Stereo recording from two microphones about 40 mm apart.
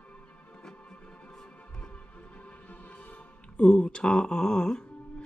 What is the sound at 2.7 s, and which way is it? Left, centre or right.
Music, left.